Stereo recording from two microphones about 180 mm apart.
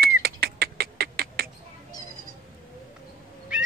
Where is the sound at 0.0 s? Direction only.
60° right (ahead or behind).